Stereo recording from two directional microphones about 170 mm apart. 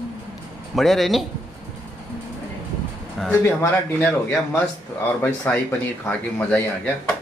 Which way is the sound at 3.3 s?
15° left (ahead or behind).